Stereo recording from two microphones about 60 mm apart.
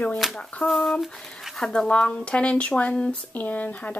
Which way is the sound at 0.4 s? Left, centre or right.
Left.